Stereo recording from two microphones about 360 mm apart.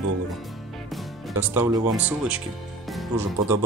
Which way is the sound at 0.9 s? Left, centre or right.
Centre.